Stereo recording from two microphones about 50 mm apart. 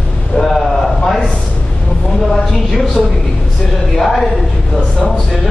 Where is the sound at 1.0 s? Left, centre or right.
Centre.